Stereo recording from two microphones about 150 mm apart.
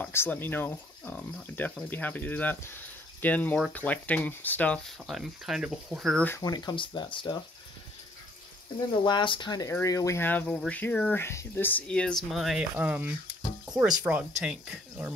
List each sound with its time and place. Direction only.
0.0 s speech: 15° left (ahead or behind)
6.2 s speech: 20° left (ahead or behind)
9.0 s speech: 30° left (ahead or behind); by 15.1 s 5° right (ahead or behind)